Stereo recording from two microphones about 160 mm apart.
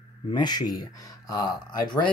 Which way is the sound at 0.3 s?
25° left (ahead or behind).